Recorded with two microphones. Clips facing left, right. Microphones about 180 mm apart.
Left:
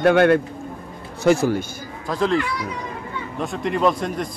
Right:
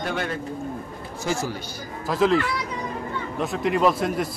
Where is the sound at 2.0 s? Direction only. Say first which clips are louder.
Even; 5° right (ahead or behind).